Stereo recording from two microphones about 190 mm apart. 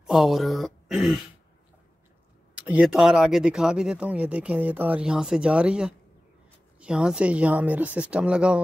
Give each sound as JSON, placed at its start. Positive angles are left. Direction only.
{"t": 0.0, "sound": "speech", "side_deg": 0}
{"t": 2.6, "sound": "speech", "side_deg": -5}